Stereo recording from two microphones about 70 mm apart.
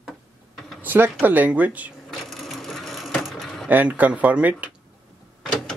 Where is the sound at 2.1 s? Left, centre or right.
Centre.